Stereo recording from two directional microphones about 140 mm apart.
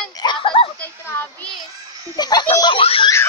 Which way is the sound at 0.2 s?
35° left (ahead or behind).